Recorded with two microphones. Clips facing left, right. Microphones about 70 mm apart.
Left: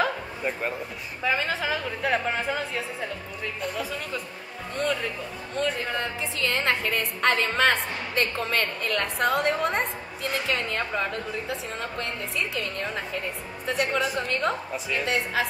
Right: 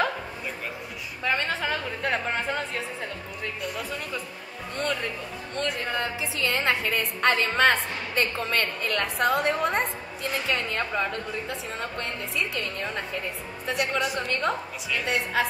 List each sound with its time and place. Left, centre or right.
1.2 s a woman's voice: centre
4.7 s a woman's voice: centre